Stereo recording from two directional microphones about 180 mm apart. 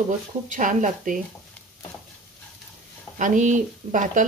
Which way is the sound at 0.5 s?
45° right (ahead or behind).